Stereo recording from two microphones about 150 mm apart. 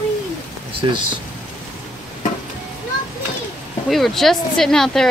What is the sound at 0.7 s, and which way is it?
Speech, 35° right (ahead or behind).